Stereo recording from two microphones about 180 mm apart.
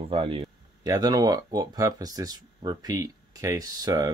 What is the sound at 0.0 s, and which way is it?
Speech, 30° right (ahead or behind).